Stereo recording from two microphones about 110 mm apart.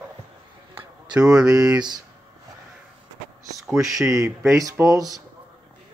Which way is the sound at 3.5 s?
Centre (ahead or behind).